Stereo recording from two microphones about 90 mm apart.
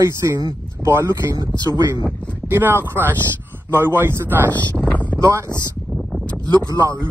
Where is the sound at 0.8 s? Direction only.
5° right (ahead or behind).